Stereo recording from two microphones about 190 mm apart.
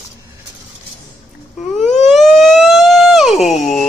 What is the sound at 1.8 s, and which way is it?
Siren, centre (ahead or behind).